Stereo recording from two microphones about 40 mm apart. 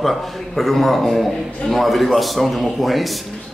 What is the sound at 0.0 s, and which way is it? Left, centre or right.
A man's voice, centre.